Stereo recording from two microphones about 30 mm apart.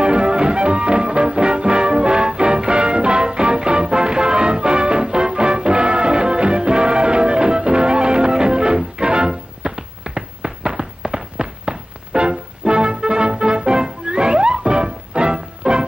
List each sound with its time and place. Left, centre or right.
0.0 s music: right